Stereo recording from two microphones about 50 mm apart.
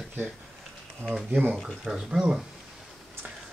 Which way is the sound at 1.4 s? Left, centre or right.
Right.